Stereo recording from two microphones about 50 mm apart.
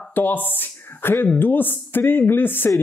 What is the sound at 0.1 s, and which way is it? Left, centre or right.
Speech, left.